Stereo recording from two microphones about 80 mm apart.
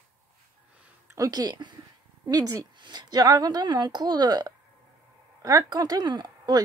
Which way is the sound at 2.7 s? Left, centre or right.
Right.